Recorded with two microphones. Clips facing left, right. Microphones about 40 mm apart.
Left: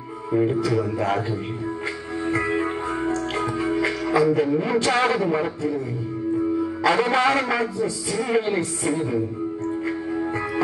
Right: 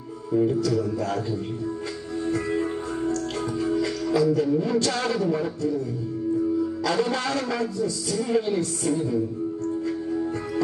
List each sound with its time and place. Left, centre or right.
0.5 s a man's voice: left
2.2 s music: left
6.8 s a man's voice: left